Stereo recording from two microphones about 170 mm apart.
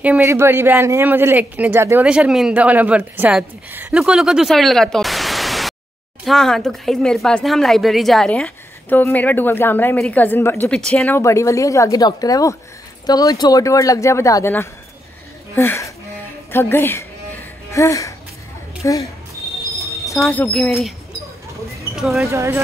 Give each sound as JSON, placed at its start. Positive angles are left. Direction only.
{"t": 0.0, "sound": "a woman's voice", "side_deg": -10}
{"t": 16.5, "sound": "music", "side_deg": 15}
{"t": 18.8, "sound": "a woman's voice", "side_deg": 20}
{"t": 20.2, "sound": "speech", "side_deg": 5}
{"t": 21.9, "sound": "speech", "side_deg": 0}
{"t": 22.3, "sound": "speech", "side_deg": -15}